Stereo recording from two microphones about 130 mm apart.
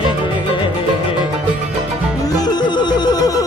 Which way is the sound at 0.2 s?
40° left (ahead or behind).